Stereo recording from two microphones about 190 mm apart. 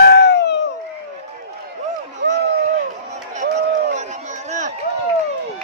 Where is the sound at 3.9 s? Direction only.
40° right (ahead or behind).